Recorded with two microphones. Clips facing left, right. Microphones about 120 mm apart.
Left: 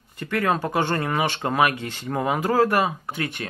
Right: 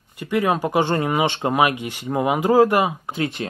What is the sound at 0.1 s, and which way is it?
Speech, 15° right (ahead or behind).